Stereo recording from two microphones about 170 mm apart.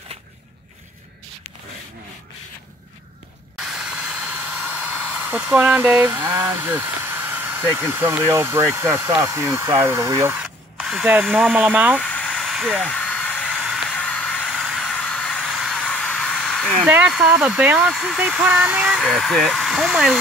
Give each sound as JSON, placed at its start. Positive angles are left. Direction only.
{"t": 3.5, "sound": "a sound", "side_deg": -5}
{"t": 5.2, "sound": "speech", "side_deg": -10}
{"t": 10.4, "sound": "drill", "side_deg": 0}
{"t": 11.5, "sound": "speech", "side_deg": -10}
{"t": 12.0, "sound": "a sound", "side_deg": 5}
{"t": 16.8, "sound": "speech", "side_deg": -10}